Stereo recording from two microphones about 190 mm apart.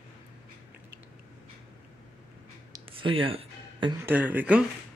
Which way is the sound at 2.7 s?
25° right (ahead or behind).